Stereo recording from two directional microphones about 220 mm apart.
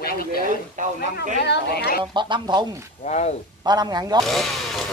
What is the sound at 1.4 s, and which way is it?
Speech, 50° left (ahead or behind).